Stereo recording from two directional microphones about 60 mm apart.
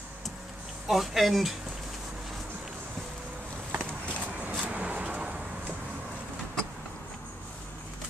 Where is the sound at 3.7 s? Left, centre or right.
Right.